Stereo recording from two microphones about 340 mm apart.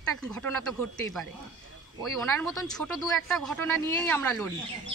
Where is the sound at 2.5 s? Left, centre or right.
Centre.